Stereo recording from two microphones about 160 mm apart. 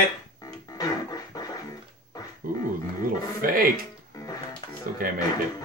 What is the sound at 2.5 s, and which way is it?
Dog, 60° right (ahead or behind).